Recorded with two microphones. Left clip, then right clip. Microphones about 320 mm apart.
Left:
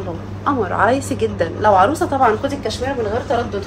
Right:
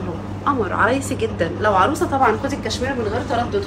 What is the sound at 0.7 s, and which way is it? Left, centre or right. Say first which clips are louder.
A woman's voice: left 2 dB; left.